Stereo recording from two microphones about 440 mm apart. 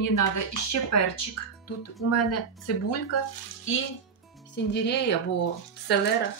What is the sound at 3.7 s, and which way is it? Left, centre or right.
Speech, left.